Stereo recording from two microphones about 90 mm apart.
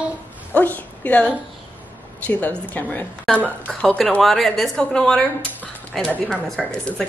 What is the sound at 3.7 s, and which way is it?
A woman's voice, 5° left (ahead or behind).